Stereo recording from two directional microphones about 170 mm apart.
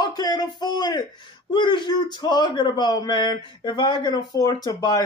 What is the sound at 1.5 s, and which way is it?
Speech, 30° left (ahead or behind).